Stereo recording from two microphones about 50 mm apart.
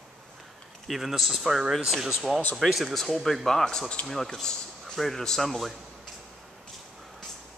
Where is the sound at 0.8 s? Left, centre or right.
Centre.